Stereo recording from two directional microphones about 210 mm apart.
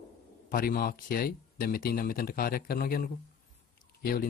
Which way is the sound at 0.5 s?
45° left (ahead or behind).